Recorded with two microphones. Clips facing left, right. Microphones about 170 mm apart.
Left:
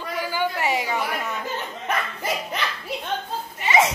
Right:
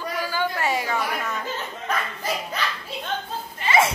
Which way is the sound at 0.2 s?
15° left (ahead or behind).